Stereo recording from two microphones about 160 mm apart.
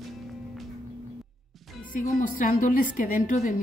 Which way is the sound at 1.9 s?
55° left (ahead or behind).